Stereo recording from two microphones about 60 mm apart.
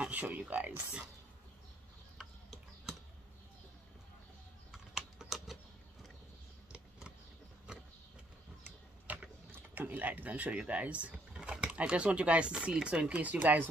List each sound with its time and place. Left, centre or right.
0.0 s speech: right
2.1 s tick-tock: centre
4.9 s typing: centre
9.1 s a sound: right
9.5 s speech: right